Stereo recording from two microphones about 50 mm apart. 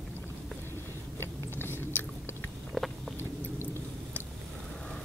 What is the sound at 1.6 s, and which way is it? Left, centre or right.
Biting, left.